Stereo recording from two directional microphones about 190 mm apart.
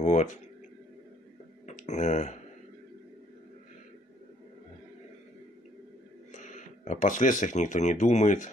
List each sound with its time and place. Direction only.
0.0 s speech: 35° left (ahead or behind)
1.7 s speech: 40° left (ahead or behind)
6.3 s speech: 40° left (ahead or behind)